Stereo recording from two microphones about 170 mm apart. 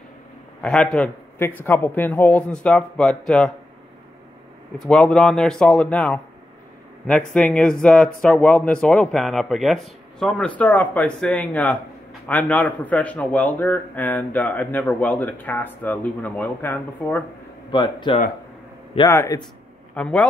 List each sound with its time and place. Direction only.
0.6 s a man's voice: 5° left (ahead or behind)
4.7 s a man's voice: centre (ahead or behind)
17.6 s speech: 25° left (ahead or behind)
19.0 s a man's voice: 15° left (ahead or behind)